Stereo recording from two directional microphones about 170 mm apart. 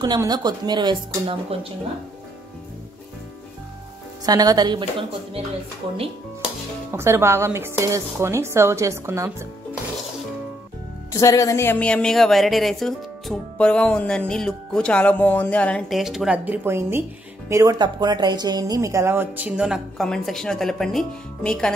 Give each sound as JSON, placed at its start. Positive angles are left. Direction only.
{"t": 0.0, "sound": "speech", "side_deg": -25}
{"t": 4.3, "sound": "speech", "side_deg": -20}
{"t": 6.9, "sound": "a woman's voice", "side_deg": -15}
{"t": 11.1, "sound": "a woman's voice", "side_deg": 20}